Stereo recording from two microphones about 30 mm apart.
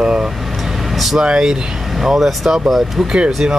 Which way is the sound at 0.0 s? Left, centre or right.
Right.